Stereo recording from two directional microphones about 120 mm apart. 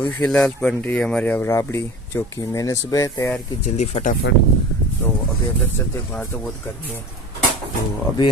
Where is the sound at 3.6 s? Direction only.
80° left.